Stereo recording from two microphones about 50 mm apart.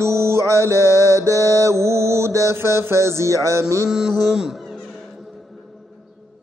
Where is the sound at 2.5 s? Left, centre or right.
Right.